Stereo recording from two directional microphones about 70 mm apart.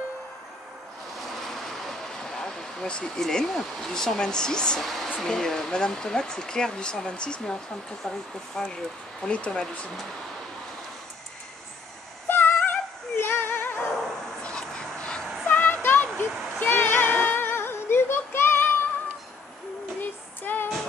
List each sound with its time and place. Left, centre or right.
1.3 s vehicle: centre
5.2 s speech: centre
12.3 s music: left
14.4 s duck: centre
15.4 s a sound: left
16.2 s singing: left
20.0 s child singing: left